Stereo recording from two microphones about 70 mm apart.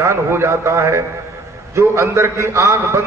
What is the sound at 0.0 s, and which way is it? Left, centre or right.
A man's voice, right.